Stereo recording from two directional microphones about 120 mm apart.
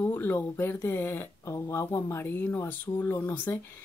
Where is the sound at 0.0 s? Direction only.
20° left (ahead or behind).